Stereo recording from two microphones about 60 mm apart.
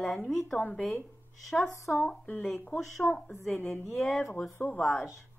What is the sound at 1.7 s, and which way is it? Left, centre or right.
Speech, left.